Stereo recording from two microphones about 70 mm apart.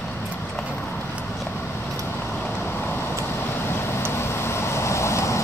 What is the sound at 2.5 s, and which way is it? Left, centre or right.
Vehicle, left.